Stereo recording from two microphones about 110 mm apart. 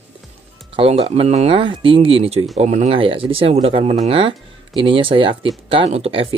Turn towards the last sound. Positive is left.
turn(degrees=-55)  # may be behind; listen again after turning